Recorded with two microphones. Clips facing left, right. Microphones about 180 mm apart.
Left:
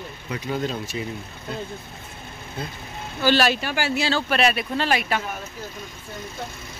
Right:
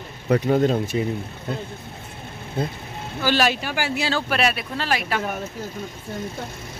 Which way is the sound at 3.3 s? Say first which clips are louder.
Left 1 dB; 15° right (ahead or behind).